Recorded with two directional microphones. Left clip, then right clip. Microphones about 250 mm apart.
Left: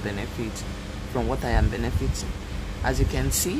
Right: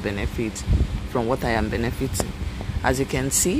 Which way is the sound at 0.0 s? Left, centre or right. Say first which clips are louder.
Right 4 dB; centre.